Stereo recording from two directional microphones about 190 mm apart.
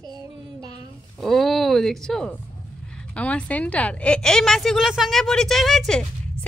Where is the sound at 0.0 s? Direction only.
20° right (ahead or behind).